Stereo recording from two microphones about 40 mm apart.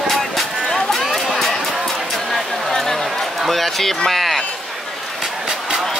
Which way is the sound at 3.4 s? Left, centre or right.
Centre.